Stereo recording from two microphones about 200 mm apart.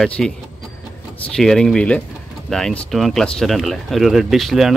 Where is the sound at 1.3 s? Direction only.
Centre (ahead or behind).